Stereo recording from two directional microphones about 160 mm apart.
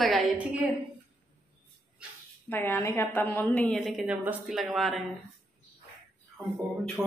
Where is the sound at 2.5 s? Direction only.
15° left (ahead or behind).